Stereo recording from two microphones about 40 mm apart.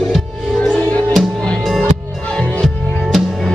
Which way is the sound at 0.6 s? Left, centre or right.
Left.